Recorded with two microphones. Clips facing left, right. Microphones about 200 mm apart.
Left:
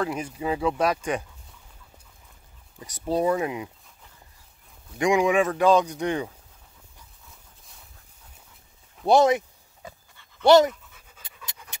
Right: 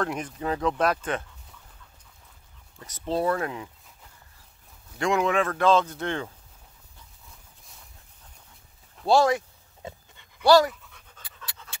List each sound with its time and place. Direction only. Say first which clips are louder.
0.0 s a man's voice: left 1 dB; 5° left (ahead or behind)
2.8 s a man's voice: left 2 dB; 10° left (ahead or behind)
4.9 s a man's voice: left 3 dB; 15° left (ahead or behind)
9.0 s speech: left 2 dB; 20° left (ahead or behind)
9.8 s dog: right 4 dB; 25° right (ahead or behind)
10.4 s speech: left 2 dB; 20° left (ahead or behind)
10.7 s pant: left 3 dB; centre (ahead or behind)
11.4 s pant: even; 15° left (ahead or behind)